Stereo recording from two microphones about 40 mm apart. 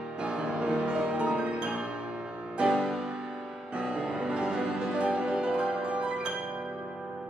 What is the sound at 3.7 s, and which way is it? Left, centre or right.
Music, right.